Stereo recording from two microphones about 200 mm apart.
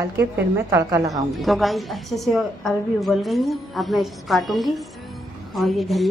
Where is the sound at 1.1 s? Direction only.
Centre (ahead or behind).